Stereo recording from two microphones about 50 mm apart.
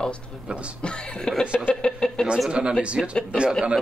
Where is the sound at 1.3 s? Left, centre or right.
Centre.